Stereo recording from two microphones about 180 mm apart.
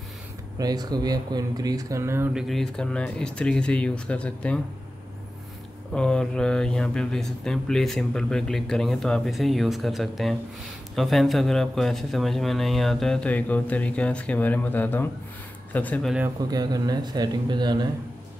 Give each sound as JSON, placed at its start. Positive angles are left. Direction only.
{"t": 0.6, "sound": "speech", "side_deg": -20}
{"t": 2.3, "sound": "speech", "side_deg": 0}
{"t": 5.9, "sound": "speech", "side_deg": 5}
{"t": 16.3, "sound": "speech", "side_deg": -20}